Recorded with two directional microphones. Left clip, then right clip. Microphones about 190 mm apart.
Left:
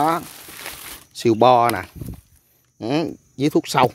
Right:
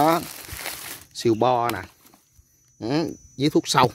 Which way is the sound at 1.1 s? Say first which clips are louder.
Left 3 dB; 15° left (ahead or behind).